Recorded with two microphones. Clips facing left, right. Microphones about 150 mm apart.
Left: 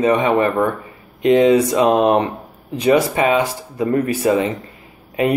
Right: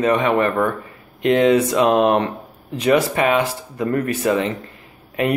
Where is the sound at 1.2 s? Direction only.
5° left (ahead or behind).